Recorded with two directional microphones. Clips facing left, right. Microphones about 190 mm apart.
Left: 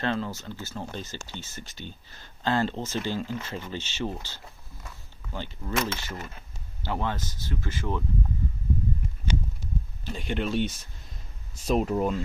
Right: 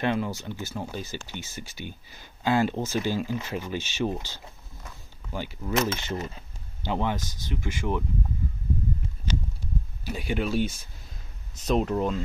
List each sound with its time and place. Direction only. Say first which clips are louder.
0.0 s speech: right 2 dB; 15° right (ahead or behind)
5.9 s speech: right 5 dB; 20° right (ahead or behind)
10.0 s speech: right 1 dB; 5° right (ahead or behind)